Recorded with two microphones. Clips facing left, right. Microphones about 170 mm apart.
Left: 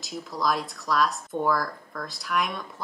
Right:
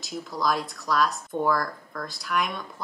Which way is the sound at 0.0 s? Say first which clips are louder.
Even; centre (ahead or behind).